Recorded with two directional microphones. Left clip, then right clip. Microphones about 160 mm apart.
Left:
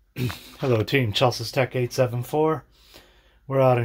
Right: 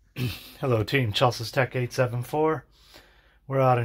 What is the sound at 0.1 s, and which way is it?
Speech, 35° left (ahead or behind).